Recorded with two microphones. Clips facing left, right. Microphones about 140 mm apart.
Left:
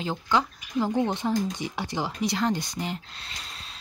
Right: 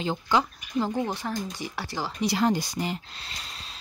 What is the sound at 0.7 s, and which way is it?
Speech, 15° left (ahead or behind).